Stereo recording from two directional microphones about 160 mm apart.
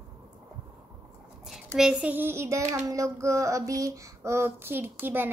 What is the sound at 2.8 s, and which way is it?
Child singing, 20° right (ahead or behind).